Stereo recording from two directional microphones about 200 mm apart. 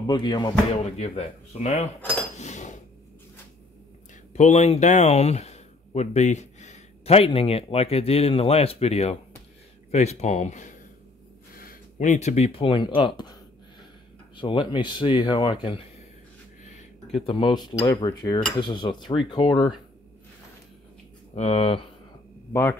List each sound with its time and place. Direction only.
0.0 s speech: 20° left (ahead or behind)
0.9 s speech: 30° left (ahead or behind)
2.3 s cutlery: 35° left (ahead or behind)
4.3 s speech: 35° left (ahead or behind)
14.3 s speech: 25° left (ahead or behind)
21.4 s speech: 30° left (ahead or behind)
22.5 s speech: 10° left (ahead or behind)